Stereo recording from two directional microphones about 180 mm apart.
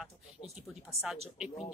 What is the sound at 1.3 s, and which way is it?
Speech, 5° right (ahead or behind).